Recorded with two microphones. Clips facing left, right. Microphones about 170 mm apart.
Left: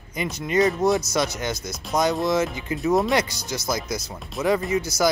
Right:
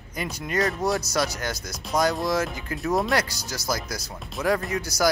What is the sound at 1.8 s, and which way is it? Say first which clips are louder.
Speech: left 2 dB; centre (ahead or behind).